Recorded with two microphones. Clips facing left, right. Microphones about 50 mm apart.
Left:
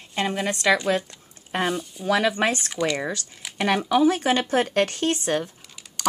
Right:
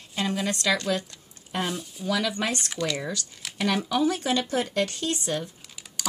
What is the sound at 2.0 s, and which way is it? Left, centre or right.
Speech, centre.